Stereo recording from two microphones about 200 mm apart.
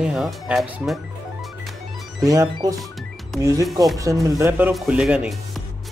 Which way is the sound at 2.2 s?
15° right (ahead or behind).